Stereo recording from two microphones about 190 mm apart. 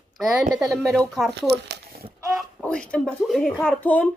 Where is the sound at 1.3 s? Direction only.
60° right (ahead or behind).